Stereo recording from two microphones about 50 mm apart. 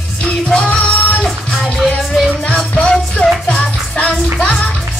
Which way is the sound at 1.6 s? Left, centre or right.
Centre.